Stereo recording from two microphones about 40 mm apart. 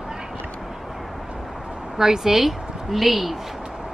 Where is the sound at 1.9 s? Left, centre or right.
Centre.